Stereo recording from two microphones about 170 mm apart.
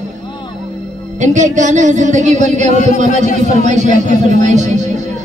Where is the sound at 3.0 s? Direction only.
50° left (ahead or behind).